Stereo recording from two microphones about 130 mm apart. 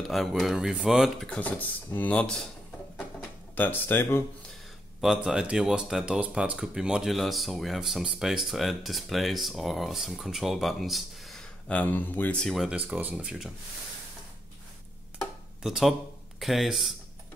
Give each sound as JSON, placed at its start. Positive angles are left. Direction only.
{"t": 0.1, "sound": "speech", "side_deg": 0}
{"t": 3.5, "sound": "speech", "side_deg": 15}
{"t": 5.0, "sound": "speech", "side_deg": -5}
{"t": 15.6, "sound": "speech", "side_deg": -5}